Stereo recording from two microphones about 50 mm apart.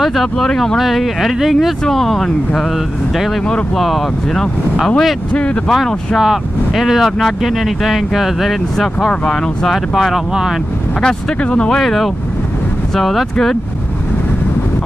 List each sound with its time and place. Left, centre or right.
0.0 s speech: centre
3.7 s speech: centre
6.1 s speech: centre
9.3 s speech: centre
9.9 s speech: centre
11.0 s speech: centre
11.8 s speech: centre